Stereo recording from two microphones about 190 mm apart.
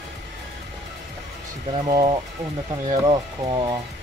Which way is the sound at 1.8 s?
25° right (ahead or behind).